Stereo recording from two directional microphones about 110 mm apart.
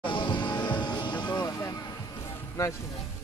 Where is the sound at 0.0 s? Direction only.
50° left (ahead or behind).